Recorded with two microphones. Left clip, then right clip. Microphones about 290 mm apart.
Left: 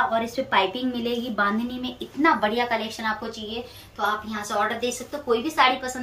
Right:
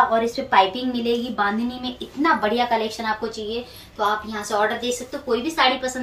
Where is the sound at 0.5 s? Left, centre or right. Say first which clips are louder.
Right 6 dB; centre.